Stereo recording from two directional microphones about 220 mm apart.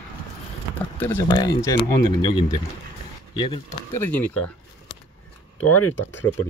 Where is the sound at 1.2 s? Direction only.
20° left (ahead or behind).